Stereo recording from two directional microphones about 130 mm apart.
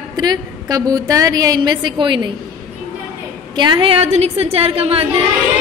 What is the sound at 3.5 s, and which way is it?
A woman's voice, 35° right (ahead or behind).